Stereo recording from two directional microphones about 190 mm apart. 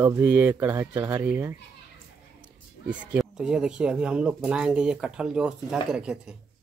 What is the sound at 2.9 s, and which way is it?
Speech, 5° right (ahead or behind).